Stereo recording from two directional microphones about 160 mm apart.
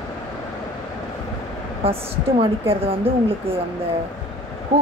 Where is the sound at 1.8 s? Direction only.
35° right (ahead or behind).